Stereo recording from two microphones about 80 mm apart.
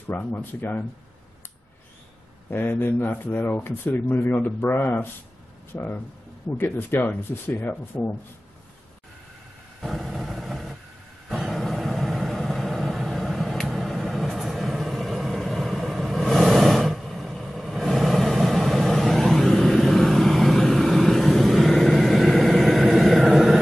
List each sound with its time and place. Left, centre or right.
0.1 s speech: left
2.5 s speech: left
9.8 s vehicle: centre